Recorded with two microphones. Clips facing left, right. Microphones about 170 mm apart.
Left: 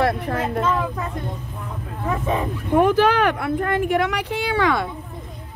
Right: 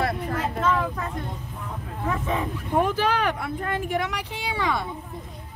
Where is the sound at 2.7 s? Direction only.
70° left (ahead or behind).